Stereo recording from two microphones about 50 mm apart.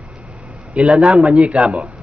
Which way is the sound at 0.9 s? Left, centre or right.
Right.